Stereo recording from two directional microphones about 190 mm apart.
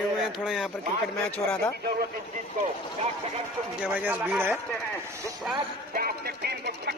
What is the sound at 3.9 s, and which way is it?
Speech, 10° right (ahead or behind).